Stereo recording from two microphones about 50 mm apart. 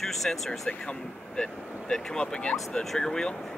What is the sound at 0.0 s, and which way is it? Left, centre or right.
Speech, centre.